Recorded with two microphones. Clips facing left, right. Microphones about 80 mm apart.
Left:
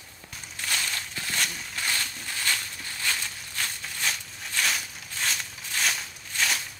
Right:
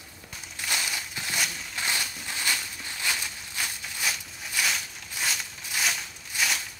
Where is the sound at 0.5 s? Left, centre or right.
Centre.